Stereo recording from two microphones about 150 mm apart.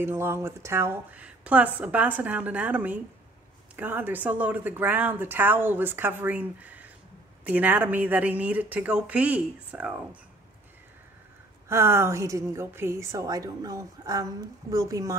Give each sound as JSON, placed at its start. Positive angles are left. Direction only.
{"t": 0.0, "sound": "speech", "side_deg": -15}
{"t": 11.7, "sound": "a woman's voice", "side_deg": -15}